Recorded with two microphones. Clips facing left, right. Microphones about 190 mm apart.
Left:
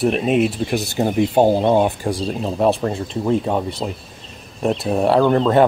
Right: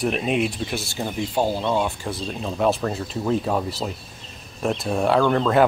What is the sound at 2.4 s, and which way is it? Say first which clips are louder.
Speech: left 3 dB; 30° left (ahead or behind).